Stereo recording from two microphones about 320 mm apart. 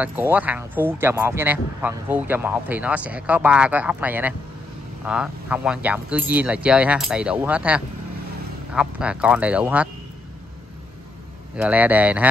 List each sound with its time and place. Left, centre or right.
0.0 s speech: centre
11.5 s speech: centre